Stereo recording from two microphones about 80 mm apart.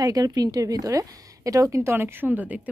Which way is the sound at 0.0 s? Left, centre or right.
Right.